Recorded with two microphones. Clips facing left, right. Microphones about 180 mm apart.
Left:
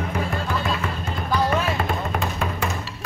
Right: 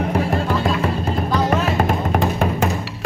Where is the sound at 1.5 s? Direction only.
45° right (ahead or behind).